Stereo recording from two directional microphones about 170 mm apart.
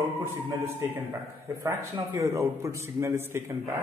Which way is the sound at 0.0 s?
15° right (ahead or behind).